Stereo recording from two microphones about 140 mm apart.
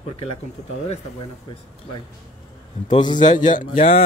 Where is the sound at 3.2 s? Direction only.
65° left (ahead or behind).